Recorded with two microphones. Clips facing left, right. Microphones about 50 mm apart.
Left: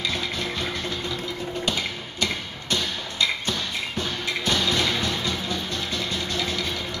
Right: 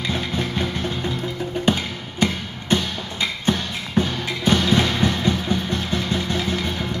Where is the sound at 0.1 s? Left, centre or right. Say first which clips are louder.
Right 4 dB; right.